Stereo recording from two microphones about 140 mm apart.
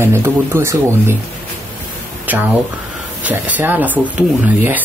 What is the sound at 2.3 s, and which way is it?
Speech, 10° right (ahead or behind).